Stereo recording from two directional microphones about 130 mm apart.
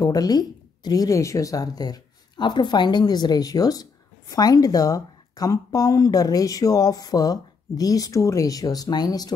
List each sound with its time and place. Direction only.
0.0 s a woman's voice: 30° left (ahead or behind)